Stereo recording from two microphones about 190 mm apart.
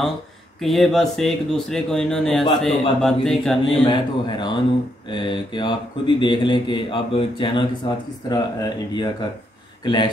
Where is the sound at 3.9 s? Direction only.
25° left (ahead or behind).